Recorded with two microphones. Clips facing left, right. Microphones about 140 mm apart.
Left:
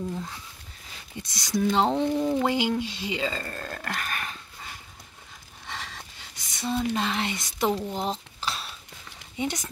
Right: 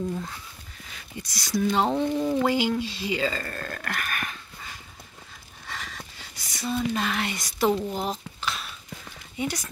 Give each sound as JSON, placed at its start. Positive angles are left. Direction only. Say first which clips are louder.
{"t": 1.2, "sound": "speech", "louder": "even", "side_deg": 20}
{"t": 1.9, "sound": "speech", "louder": "even", "side_deg": 0}
{"t": 2.3, "sound": "speech", "louder": "right 1 dB", "side_deg": 20}
{"t": 5.7, "sound": "a sound", "louder": "even", "side_deg": 25}
{"t": 9.4, "sound": "speech", "louder": "even", "side_deg": 20}